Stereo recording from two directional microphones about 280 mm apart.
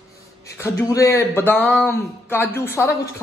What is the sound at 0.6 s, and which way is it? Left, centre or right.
Speech, centre.